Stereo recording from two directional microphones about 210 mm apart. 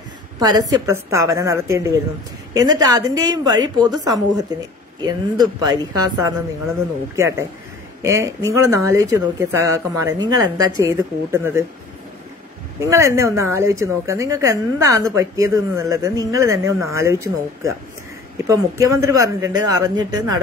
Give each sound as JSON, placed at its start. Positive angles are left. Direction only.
{"t": 0.4, "sound": "a woman's voice", "side_deg": -20}
{"t": 12.9, "sound": "a woman's voice", "side_deg": -15}